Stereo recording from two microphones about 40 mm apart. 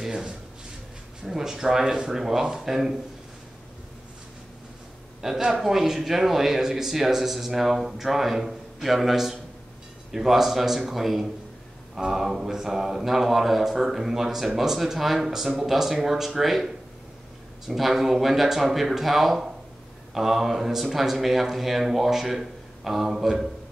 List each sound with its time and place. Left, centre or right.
0.1 s a sound: centre
1.2 s speech: centre
5.2 s speech: centre